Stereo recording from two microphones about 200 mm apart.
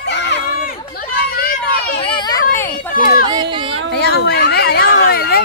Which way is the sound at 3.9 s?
55° left (ahead or behind).